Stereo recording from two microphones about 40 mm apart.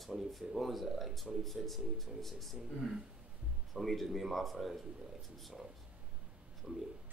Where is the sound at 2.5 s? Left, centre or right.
Centre.